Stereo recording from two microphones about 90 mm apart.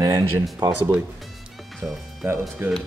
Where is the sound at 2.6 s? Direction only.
30° right (ahead or behind).